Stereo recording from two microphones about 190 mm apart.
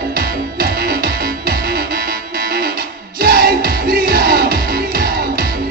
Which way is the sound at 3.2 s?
55° right (ahead or behind).